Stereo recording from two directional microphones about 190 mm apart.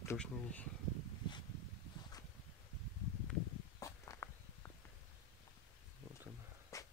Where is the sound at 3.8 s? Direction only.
15° left (ahead or behind).